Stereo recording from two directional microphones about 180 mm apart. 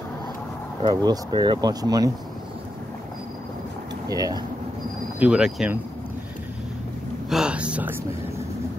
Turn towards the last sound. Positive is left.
turn(degrees=-10)  # may be behind; listen again after turning